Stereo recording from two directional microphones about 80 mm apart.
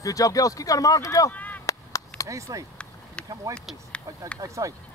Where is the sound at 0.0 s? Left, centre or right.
Left.